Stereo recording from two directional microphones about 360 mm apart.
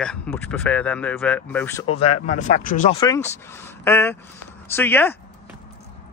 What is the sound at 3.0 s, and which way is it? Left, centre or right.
Speech, centre.